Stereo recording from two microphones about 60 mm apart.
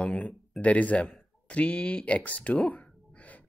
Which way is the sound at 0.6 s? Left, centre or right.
Left.